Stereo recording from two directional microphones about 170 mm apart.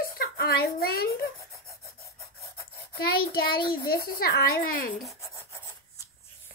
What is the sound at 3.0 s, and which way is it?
A child's voice, 65° left (ahead or behind).